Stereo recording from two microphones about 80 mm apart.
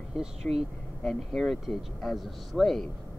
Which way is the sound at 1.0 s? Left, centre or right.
Centre.